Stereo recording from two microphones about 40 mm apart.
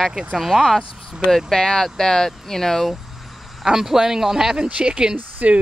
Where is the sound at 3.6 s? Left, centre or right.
Centre.